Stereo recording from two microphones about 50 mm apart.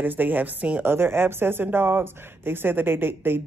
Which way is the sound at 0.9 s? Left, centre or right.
Right.